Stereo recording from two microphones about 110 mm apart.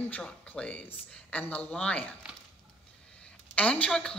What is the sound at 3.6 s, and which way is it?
Speech, 10° left (ahead or behind).